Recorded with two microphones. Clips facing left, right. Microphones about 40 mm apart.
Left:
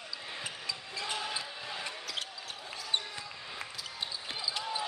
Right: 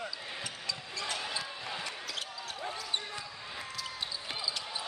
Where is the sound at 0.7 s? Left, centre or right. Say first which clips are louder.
Right 1 dB; centre.